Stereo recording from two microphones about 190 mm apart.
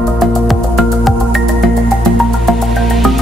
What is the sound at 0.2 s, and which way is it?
Music, centre (ahead or behind).